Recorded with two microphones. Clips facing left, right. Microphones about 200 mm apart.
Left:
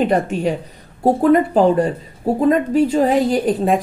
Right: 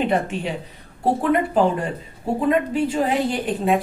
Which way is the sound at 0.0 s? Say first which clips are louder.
Left 5 dB; 40° left (ahead or behind).